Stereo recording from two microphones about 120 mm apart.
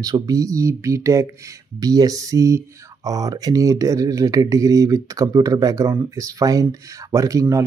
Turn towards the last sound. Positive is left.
turn(degrees=-25)  # may be behind; listen again after turning